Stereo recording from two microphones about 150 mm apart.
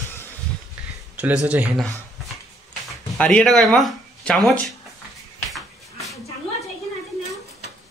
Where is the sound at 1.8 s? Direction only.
Centre (ahead or behind).